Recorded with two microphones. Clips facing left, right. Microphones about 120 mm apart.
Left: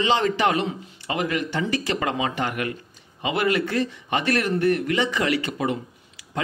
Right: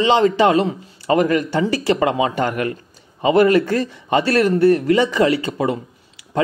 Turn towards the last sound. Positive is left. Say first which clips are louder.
# right 4 dB
turn(degrees=-30)  # may be behind; listen again after turning